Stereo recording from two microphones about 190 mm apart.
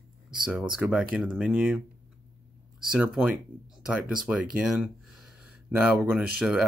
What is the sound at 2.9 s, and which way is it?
Speech, 5° right (ahead or behind).